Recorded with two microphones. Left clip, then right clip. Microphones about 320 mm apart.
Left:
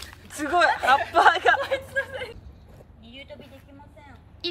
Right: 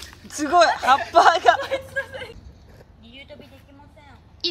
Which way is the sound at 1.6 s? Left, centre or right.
Centre.